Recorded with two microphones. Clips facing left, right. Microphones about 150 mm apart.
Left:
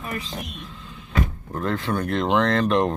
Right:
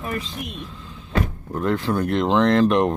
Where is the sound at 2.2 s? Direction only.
30° right (ahead or behind).